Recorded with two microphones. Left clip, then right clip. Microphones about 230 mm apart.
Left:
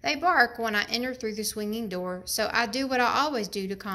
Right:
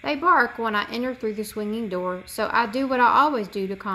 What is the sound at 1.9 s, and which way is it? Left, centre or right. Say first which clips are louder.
A woman's voice: right 4 dB; left.